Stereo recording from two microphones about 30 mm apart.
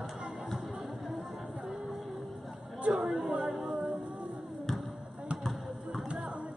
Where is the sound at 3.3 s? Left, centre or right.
Right.